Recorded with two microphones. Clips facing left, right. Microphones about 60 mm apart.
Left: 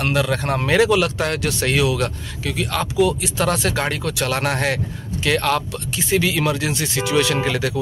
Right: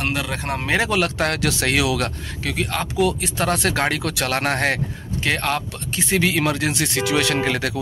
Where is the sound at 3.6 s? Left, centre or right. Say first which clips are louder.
Right 1 dB; right.